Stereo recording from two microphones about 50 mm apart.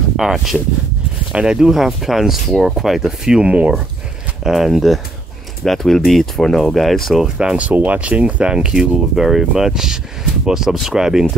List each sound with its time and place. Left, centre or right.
0.2 s speech: centre
1.3 s speech: centre
1.7 s speech: centre; by 3.8 s right
4.5 s speech: centre
7.3 s speech: right
8.5 s speech: centre